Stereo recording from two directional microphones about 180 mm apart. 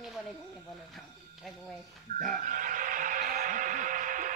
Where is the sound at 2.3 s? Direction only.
50° right (ahead or behind).